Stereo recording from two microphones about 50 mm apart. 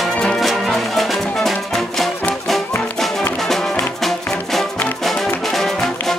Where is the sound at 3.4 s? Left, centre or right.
Centre.